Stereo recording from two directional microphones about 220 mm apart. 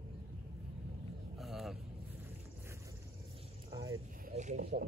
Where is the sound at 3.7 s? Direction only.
15° right (ahead or behind).